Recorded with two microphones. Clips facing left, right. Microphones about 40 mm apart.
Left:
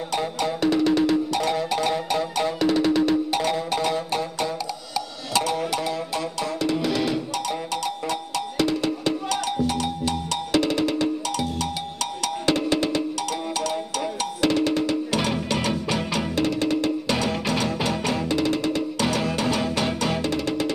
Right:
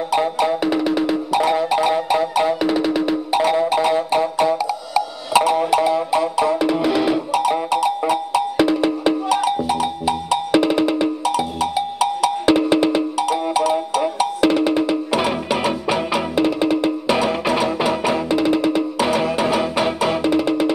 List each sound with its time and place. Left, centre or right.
0.1 s music: centre